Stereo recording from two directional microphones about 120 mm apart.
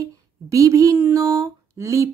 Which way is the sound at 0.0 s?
25° right (ahead or behind).